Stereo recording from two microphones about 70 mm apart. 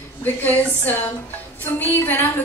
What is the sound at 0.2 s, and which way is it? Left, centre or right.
A woman's voice, left.